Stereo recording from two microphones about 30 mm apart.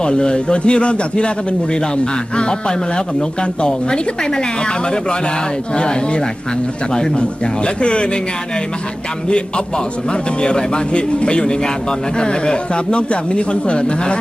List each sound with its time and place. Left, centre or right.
0.0 s speech: left
3.2 s speech: left
5.8 s speech: left
10.4 s speech: left